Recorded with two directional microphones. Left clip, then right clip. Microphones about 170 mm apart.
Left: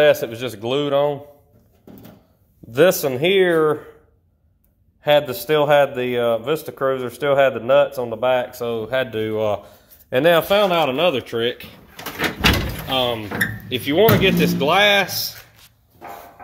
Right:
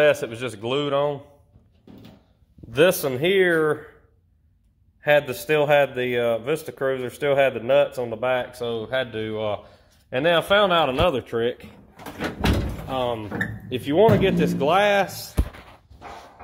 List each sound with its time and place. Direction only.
0.0 s a man's voice: 10° left (ahead or behind)
2.7 s a man's voice: 5° left (ahead or behind)
5.0 s a man's voice: 5° left (ahead or behind); by 10.3 s 35° left (ahead or behind)
10.3 s a man's voice: 20° left (ahead or behind); by 11.6 s 5° left (ahead or behind)
12.9 s speech: 20° left (ahead or behind)
13.7 s a man's voice: centre (ahead or behind)